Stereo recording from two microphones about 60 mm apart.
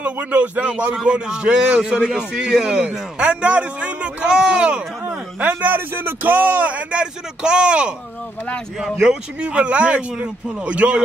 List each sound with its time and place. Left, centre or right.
0.0 s a man's voice: right